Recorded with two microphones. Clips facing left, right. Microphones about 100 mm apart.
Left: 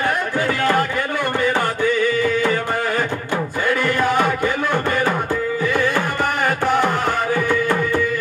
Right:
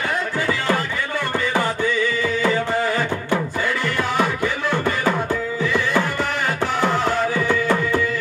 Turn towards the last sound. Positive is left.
turn(degrees=50)  # may be behind; listen again after turning